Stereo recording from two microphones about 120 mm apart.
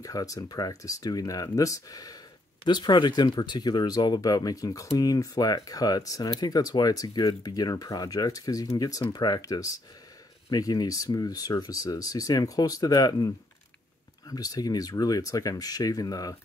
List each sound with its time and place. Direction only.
0.0 s speech: 30° left (ahead or behind)